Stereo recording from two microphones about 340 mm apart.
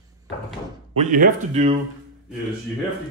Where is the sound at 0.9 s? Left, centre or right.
Right.